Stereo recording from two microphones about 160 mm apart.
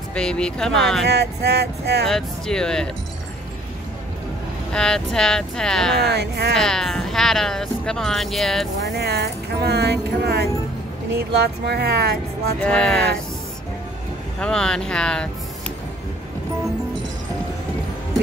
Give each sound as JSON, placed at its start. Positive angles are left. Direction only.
{"t": 0.1, "sound": "speech", "side_deg": 5}
{"t": 1.0, "sound": "speech", "side_deg": -90}
{"t": 2.0, "sound": "speech", "side_deg": 0}
{"t": 4.7, "sound": "speech", "side_deg": 5}
{"t": 6.0, "sound": "speech", "side_deg": -90}
{"t": 6.5, "sound": "speech", "side_deg": 5}
{"t": 8.8, "sound": "speech", "side_deg": -90}
{"t": 12.6, "sound": "speech", "side_deg": 5}
{"t": 14.4, "sound": "speech", "side_deg": 5}